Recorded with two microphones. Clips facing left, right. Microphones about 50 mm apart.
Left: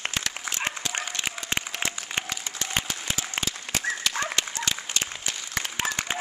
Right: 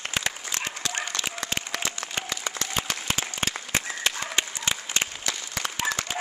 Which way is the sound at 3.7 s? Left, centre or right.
Right.